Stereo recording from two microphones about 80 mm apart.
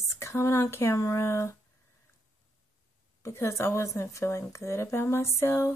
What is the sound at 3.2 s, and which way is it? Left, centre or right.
A woman's voice, left.